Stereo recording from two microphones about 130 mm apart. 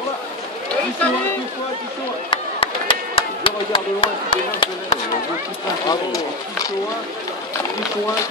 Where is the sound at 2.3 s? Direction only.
40° left (ahead or behind).